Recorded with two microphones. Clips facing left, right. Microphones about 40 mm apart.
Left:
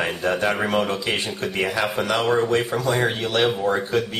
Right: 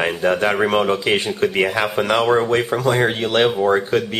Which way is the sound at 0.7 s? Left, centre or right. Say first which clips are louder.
Right 5 dB; right.